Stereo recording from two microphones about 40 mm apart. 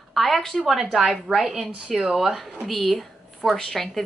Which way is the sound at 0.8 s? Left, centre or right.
Centre.